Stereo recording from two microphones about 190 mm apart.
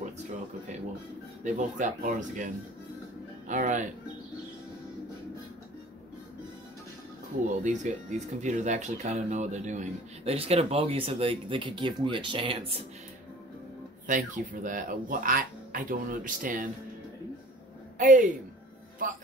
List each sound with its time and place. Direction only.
1.4 s speech: 40° right (ahead or behind)
7.4 s speech: 40° right (ahead or behind)
14.0 s speech: 45° right (ahead or behind)
17.9 s speech: 45° right (ahead or behind)